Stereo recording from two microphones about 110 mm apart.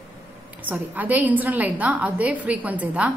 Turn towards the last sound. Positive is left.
turn(degrees=-15)  # may be behind; listen again after turning